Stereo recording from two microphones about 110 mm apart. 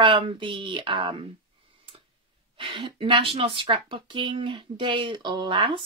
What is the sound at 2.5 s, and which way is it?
Speech, 45° right (ahead or behind).